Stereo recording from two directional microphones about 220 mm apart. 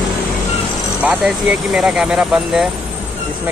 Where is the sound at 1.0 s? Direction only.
5° right (ahead or behind).